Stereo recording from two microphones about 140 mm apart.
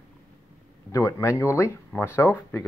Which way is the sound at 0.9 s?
20° left (ahead or behind).